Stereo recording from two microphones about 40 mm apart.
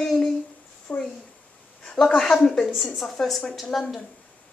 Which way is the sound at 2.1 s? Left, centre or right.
Centre.